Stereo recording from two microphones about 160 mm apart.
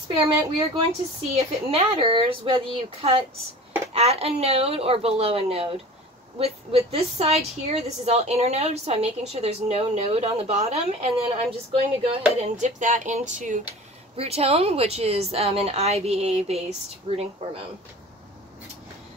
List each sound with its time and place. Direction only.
1.3 s a woman's voice: 35° right (ahead or behind)
14.1 s a woman's voice: 40° right (ahead or behind)